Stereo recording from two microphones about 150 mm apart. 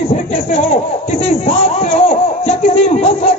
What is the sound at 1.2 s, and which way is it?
Speech, 45° left (ahead or behind).